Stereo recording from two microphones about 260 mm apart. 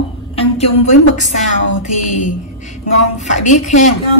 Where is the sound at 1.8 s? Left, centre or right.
Left.